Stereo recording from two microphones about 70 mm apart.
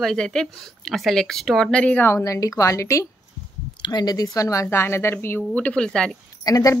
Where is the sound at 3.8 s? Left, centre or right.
Left.